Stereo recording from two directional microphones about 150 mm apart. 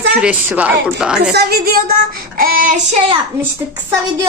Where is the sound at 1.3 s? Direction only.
90° right; by 3.1 s 55° right (ahead or behind).